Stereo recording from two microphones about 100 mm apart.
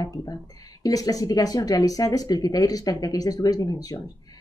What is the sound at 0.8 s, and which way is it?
Speech, 35° left (ahead or behind).